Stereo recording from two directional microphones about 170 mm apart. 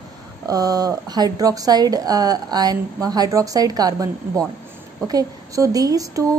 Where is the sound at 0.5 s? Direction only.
20° right (ahead or behind).